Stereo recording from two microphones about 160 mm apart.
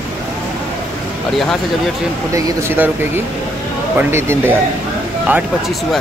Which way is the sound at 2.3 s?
20° right (ahead or behind).